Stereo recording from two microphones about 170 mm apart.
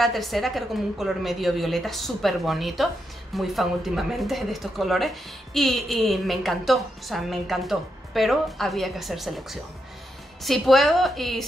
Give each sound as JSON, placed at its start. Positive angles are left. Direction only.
{"t": 0.0, "sound": "speech", "side_deg": 0}